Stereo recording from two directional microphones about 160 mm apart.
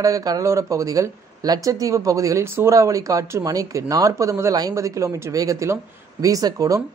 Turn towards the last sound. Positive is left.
turn(degrees=-20)  # may be behind; listen again after turning